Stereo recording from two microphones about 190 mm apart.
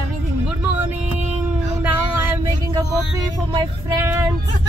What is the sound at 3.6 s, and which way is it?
Female singing, 15° right (ahead or behind).